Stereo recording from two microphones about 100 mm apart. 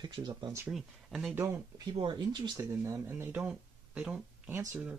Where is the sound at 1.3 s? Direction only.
25° right (ahead or behind).